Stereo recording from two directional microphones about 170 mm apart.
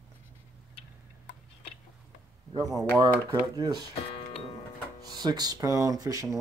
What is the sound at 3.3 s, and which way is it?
Speech, 20° right (ahead or behind).